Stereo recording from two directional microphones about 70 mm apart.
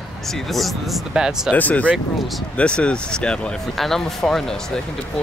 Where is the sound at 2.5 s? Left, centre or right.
Centre.